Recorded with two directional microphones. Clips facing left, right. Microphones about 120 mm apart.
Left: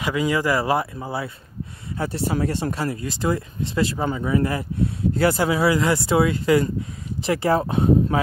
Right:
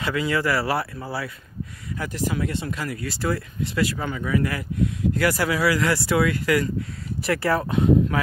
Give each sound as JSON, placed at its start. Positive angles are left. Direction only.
{"t": 0.0, "sound": "speech", "side_deg": 15}
{"t": 2.0, "sound": "speech", "side_deg": 30}